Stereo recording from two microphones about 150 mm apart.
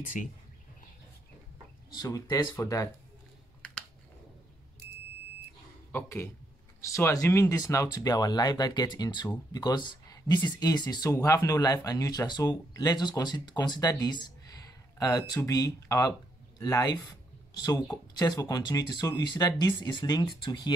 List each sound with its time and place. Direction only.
0.0 s speech: 60° left (ahead or behind)
2.0 s speech: 25° left (ahead or behind)
5.9 s speech: 15° left (ahead or behind)